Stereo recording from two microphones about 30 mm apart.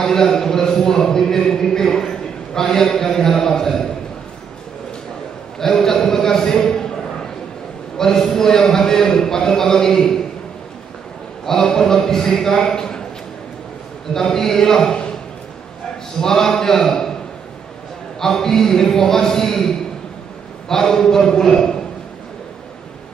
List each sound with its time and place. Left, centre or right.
0.0 s a man's voice: centre
5.6 s a man's voice: centre
8.0 s a man's voice: centre
11.4 s a man's voice: centre
14.1 s a man's voice: centre
16.2 s a man's voice: centre
18.2 s a man's voice: centre